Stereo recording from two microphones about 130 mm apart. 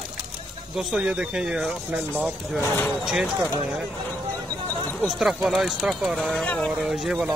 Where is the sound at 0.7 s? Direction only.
5° right (ahead or behind).